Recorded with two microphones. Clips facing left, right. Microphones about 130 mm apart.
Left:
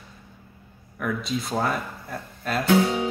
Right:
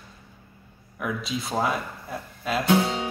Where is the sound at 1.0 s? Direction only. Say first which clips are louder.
Left 2 dB; centre (ahead or behind).